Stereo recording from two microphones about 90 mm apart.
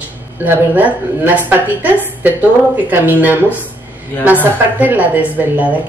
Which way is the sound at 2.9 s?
20° right (ahead or behind).